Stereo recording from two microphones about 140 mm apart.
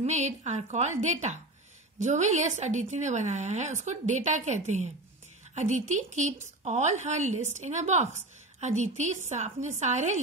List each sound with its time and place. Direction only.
0.0 s speech: 55° right (ahead or behind)